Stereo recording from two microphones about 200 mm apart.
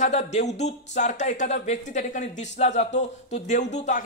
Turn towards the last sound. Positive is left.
turn(degrees=35)  # may be behind; listen again after turning